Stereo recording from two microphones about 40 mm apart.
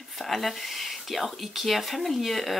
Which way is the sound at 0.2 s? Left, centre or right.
Centre.